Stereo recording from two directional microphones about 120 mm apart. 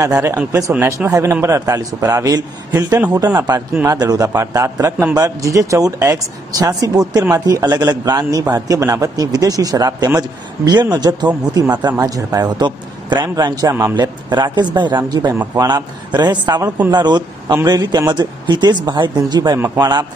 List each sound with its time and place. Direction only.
0.5 s a man's voice: 25° right (ahead or behind)